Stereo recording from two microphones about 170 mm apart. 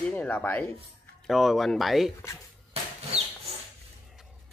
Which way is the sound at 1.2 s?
Centre (ahead or behind).